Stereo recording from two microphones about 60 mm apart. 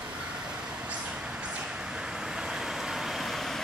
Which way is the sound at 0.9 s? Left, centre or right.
Centre.